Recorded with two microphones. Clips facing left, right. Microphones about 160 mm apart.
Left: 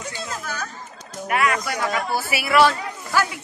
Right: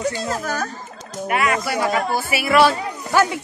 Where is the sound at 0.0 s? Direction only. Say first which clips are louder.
Right 8 dB; 40° right (ahead or behind).